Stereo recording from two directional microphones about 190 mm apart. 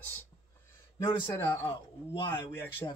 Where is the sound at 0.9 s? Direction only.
20° left (ahead or behind).